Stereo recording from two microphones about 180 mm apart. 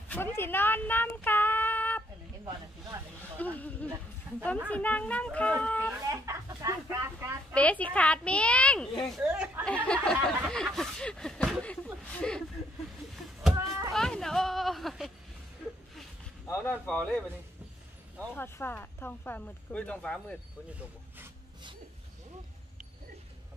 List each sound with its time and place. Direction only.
0.1 s speech: 10° left (ahead or behind)
3.3 s a woman's voice: 10° left (ahead or behind)
5.9 s speech: 20° right (ahead or behind)
7.5 s a woman's voice: 10° left (ahead or behind)
9.7 s a woman's voice: 5° left (ahead or behind)
13.1 s cat: centre (ahead or behind)
13.9 s a sound: 5° left (ahead or behind)
16.4 s a woman's voice: 10° left (ahead or behind)
18.3 s a woman's voice: 10° left (ahead or behind)